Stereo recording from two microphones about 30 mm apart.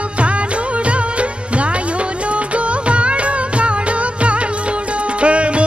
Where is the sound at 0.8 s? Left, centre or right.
Right.